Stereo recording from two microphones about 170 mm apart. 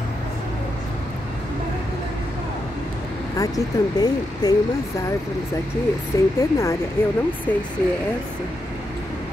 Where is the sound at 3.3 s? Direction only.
20° left (ahead or behind).